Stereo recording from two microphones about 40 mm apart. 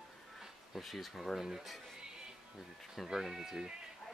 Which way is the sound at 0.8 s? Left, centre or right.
Centre.